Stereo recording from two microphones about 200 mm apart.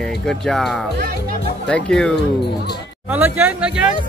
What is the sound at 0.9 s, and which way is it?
Speech, 50° right (ahead or behind).